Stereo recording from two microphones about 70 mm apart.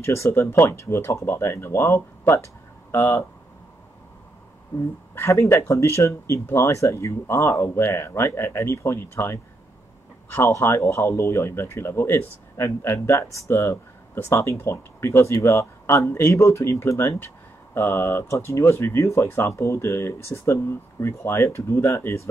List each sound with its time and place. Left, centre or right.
0.0 s speech: left
5.1 s speech: left